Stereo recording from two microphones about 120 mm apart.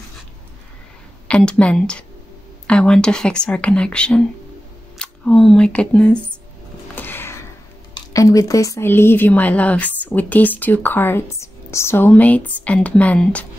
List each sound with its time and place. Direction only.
1.2 s speech: 10° left (ahead or behind)
4.9 s a sound: 5° left (ahead or behind)
5.7 s speech: 10° left (ahead or behind)
7.0 s music: 15° left (ahead or behind)
7.9 s speech: 30° left (ahead or behind); by 13.5 s 10° left (ahead or behind)